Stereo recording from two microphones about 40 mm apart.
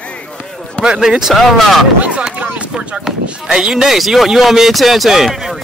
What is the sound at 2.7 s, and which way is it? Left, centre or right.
Speech, right.